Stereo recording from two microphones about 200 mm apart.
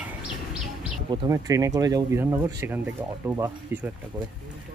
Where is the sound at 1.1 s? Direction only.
15° right (ahead or behind).